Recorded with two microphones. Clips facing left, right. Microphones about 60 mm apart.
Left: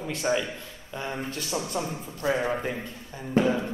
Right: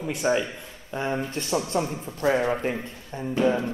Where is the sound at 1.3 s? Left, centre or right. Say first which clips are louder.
Right 4 dB; right.